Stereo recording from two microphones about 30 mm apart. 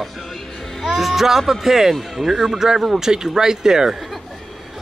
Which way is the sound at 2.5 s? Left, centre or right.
Centre.